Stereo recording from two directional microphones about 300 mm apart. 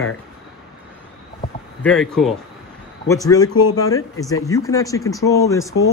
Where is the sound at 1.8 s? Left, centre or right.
Centre.